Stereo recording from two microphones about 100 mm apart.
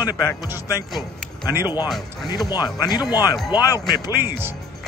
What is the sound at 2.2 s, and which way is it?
Speech, 40° left (ahead or behind).